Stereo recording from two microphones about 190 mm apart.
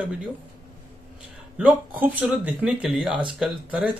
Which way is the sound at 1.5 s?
5° right (ahead or behind).